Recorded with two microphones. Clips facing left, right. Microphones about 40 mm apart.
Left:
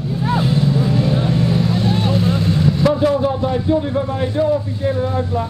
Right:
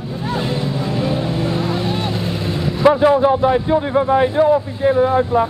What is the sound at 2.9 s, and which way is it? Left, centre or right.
A man's voice, right.